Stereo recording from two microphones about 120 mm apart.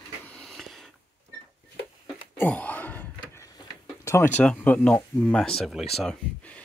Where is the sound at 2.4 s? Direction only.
15° left (ahead or behind).